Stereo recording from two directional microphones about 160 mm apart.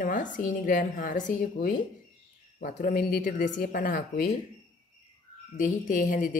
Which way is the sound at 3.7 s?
55° left (ahead or behind).